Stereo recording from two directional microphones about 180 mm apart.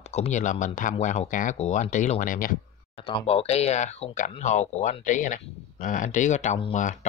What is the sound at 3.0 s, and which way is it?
Speech, 30° left (ahead or behind).